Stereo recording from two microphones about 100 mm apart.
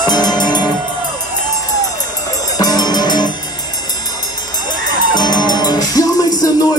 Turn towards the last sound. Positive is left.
turn(degrees=40)  # may be behind; listen again after turning